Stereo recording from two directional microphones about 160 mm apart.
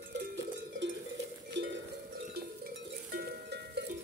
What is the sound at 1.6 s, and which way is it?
Cowbell, 90° right.